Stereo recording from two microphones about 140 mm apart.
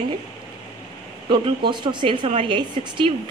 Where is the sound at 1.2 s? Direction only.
35° right (ahead or behind).